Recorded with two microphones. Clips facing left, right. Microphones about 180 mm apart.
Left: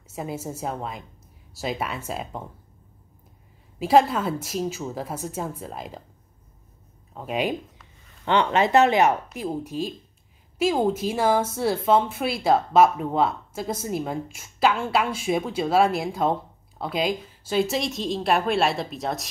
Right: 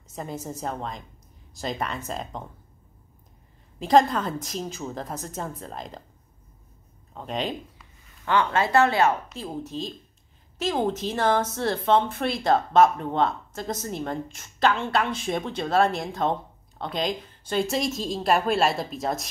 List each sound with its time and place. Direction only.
0.1 s a woman's voice: 5° left (ahead or behind)
3.8 s a woman's voice: 5° left (ahead or behind)
7.2 s a woman's voice: 10° left (ahead or behind)
8.3 s a woman's voice: 20° left (ahead or behind); by 19.2 s centre (ahead or behind)